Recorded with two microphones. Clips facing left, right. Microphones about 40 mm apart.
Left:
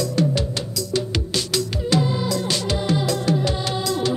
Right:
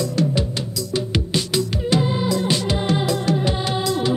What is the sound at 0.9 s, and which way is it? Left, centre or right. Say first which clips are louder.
Music: right 1 dB; centre.